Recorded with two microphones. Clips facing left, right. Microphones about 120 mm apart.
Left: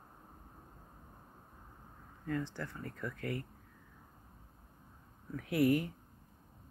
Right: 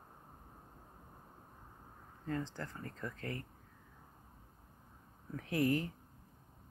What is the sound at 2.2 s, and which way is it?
Speech, 30° right (ahead or behind).